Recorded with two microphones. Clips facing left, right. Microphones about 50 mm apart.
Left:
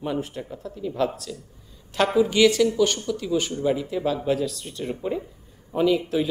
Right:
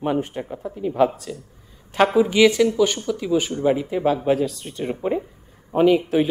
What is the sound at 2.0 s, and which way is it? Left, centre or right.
A woman's voice, centre.